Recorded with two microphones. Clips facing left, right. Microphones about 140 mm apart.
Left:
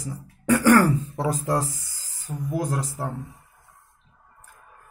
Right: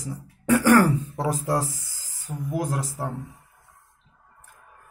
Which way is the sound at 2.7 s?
5° right (ahead or behind).